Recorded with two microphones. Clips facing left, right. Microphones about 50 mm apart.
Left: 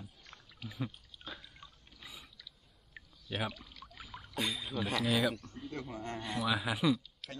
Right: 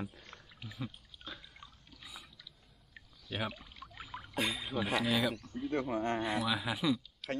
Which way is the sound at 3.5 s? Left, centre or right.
Centre.